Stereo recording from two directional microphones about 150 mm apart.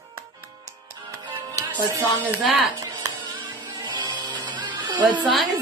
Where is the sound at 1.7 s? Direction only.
10° right (ahead or behind).